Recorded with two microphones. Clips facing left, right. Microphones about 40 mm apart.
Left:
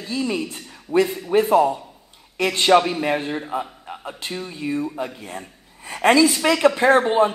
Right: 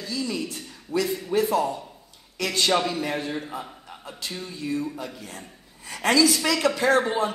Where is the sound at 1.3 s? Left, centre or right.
Left.